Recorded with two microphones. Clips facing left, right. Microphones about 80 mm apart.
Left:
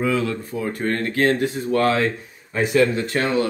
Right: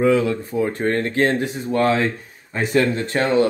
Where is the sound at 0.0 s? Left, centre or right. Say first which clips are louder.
Right 5 dB; right.